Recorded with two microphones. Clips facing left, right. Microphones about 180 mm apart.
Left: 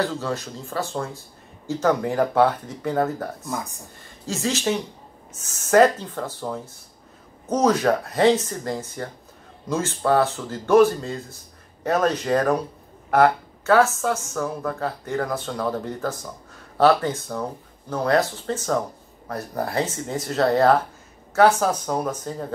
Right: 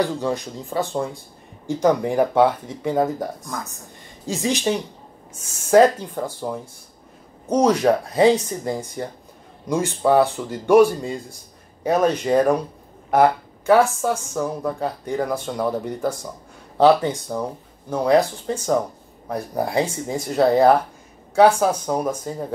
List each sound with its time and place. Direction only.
0.0 s speech: 15° right (ahead or behind)
4.3 s speech: 15° right (ahead or behind)